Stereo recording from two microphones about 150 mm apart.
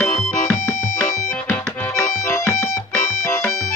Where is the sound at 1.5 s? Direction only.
15° left (ahead or behind).